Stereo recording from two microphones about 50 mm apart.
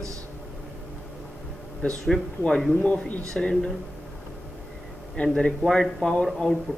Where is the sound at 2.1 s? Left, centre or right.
Centre.